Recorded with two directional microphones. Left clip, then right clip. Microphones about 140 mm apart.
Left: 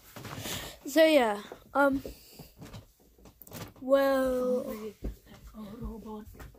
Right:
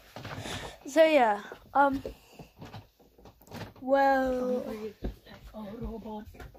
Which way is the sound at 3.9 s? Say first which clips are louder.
Right 1 dB; 20° left (ahead or behind).